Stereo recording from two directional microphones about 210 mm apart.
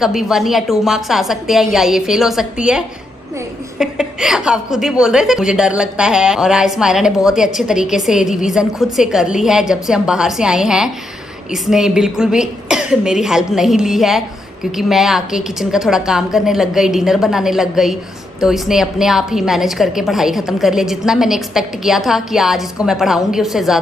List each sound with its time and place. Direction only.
0.0 s a woman's voice: centre (ahead or behind)